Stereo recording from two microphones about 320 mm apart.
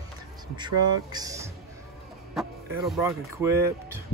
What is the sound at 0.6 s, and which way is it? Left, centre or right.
Speech, centre.